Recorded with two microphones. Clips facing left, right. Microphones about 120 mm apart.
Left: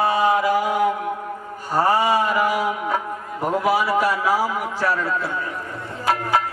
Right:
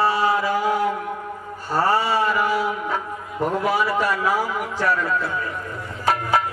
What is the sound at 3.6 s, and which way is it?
Speech, 10° left (ahead or behind).